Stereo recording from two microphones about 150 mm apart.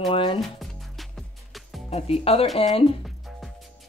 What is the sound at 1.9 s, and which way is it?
Speech, 40° left (ahead or behind).